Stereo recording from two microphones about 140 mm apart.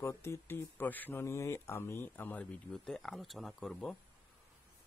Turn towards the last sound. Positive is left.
turn(degrees=5)  # may be behind; listen again after turning